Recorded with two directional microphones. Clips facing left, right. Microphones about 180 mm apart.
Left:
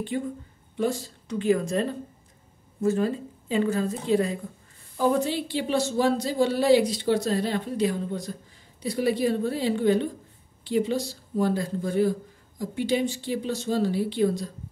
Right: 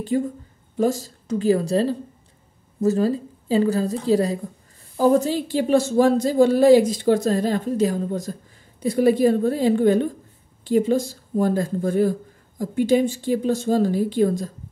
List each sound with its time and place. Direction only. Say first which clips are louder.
0.1 s a woman's voice: right 7 dB; 40° right (ahead or behind)